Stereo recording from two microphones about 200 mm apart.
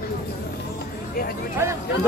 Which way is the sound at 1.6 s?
15° right (ahead or behind).